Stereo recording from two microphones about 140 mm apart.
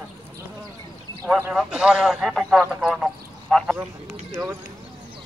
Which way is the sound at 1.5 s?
5° right (ahead or behind).